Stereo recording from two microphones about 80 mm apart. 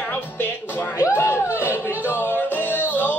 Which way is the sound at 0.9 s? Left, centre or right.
Left.